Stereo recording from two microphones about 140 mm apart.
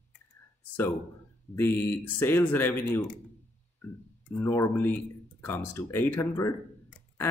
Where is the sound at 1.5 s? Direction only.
15° left (ahead or behind).